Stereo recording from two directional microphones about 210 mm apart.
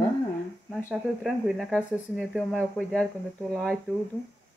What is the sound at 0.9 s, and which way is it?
Speech, 5° right (ahead or behind).